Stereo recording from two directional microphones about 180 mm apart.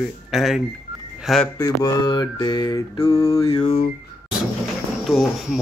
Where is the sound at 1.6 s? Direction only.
20° left (ahead or behind).